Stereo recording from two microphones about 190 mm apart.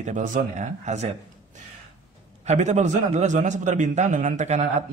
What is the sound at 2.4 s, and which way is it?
A man's voice, 40° right (ahead or behind).